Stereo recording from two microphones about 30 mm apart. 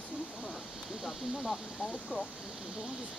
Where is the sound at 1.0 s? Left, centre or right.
Centre.